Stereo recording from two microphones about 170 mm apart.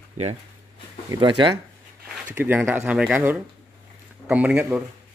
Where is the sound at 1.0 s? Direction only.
25° right (ahead or behind).